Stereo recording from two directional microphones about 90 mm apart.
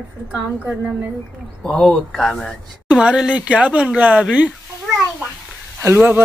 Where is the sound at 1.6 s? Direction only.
10° left (ahead or behind).